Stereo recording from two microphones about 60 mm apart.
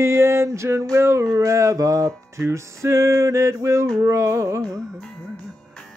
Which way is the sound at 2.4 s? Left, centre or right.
Right.